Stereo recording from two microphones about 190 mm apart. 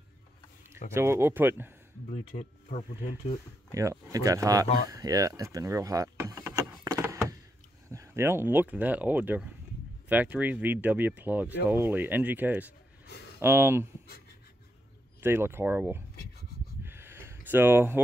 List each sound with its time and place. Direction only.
0.9 s speech: 15° right (ahead or behind)
2.0 s speech: 35° left (ahead or behind)
3.7 s speech: 15° right (ahead or behind)
4.8 s vehicle: 20° right (ahead or behind)
7.9 s speech: 15° right (ahead or behind)
15.1 s speech: 10° right (ahead or behind)
16.8 s a sound: 10° right (ahead or behind)